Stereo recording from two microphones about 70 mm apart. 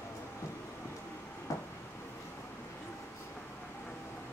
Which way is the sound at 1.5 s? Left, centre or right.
Left.